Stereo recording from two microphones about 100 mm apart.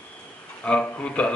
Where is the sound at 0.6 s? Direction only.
15° left (ahead or behind).